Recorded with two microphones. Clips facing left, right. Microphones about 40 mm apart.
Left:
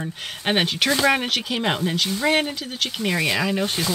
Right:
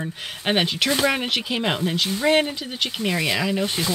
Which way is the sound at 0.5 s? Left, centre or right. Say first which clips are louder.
Left 1 dB; centre.